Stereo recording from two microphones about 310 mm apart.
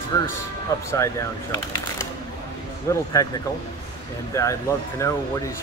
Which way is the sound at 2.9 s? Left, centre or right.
Centre.